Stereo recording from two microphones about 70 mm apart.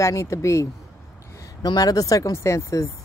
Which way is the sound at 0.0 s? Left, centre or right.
Left.